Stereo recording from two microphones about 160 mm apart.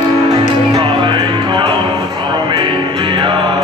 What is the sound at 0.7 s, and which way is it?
Music, 25° right (ahead or behind).